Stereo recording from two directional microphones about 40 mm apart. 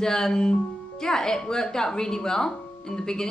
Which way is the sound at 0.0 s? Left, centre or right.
Centre.